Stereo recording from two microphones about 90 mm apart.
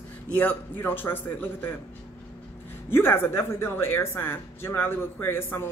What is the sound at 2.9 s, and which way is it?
Speech, 25° left (ahead or behind).